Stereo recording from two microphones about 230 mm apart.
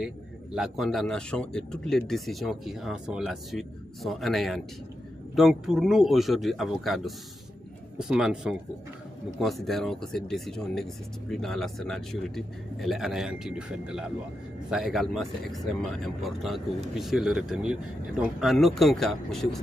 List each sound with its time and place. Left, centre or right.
0.0 s speech: centre